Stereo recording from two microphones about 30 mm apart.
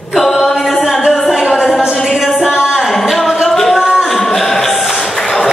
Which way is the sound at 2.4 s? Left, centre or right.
Right.